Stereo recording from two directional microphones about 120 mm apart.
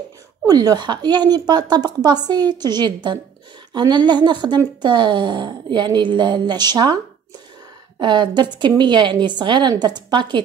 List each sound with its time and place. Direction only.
0.5 s a woman's voice: 35° right (ahead or behind)
8.0 s a woman's voice: 40° right (ahead or behind)